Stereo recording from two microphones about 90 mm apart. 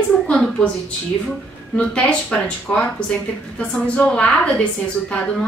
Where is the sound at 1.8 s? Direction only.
15° left (ahead or behind).